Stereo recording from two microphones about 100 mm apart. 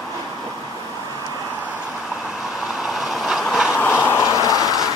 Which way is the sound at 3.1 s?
5° right (ahead or behind).